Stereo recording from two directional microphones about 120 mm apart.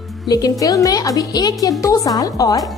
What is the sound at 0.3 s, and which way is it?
A woman's voice, 30° left (ahead or behind).